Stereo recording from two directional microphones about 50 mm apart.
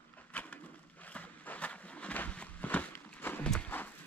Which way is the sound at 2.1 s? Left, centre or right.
Left.